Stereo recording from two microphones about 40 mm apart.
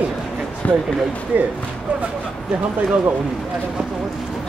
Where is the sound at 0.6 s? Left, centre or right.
Left.